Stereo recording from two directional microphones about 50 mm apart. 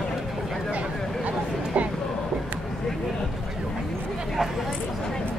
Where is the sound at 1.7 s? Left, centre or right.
Right.